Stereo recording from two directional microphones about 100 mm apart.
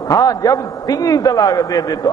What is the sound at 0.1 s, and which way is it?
A man's voice, 35° left (ahead or behind).